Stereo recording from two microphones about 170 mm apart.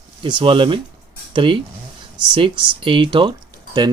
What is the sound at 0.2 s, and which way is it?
Speech, 30° right (ahead or behind).